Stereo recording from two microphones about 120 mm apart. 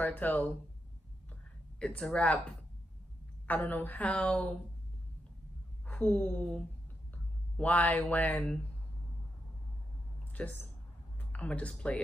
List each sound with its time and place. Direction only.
0.0 s a woman's voice: 15° left (ahead or behind)
1.8 s a woman's voice: 5° left (ahead or behind)
3.4 s a woman's voice: 15° left (ahead or behind)
5.9 s a sound: 10° left (ahead or behind)
7.5 s a woman's voice: 10° left (ahead or behind)
10.4 s a woman's voice: 10° left (ahead or behind)